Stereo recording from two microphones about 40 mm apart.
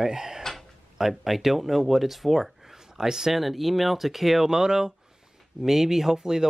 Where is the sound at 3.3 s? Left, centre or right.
Centre.